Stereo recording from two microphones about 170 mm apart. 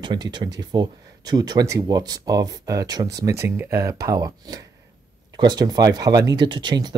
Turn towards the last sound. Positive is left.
turn(degrees=-25)  # may be behind; listen again after turning